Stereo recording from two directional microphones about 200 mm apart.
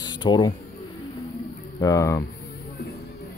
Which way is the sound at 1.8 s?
15° left (ahead or behind).